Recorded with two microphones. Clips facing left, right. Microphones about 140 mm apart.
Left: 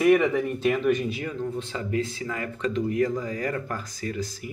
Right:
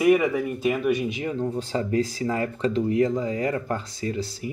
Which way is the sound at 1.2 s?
20° right (ahead or behind).